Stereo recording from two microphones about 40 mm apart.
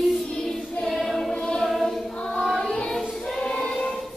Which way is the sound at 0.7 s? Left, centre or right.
Centre.